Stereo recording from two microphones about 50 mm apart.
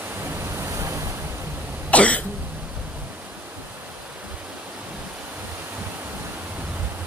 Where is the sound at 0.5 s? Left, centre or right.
Right.